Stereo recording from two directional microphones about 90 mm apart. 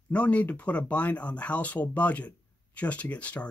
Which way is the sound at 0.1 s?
15° left (ahead or behind).